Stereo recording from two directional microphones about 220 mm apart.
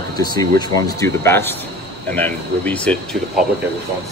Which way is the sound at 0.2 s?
20° left (ahead or behind).